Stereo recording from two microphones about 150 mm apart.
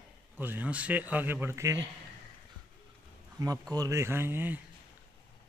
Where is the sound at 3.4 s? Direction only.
25° right (ahead or behind).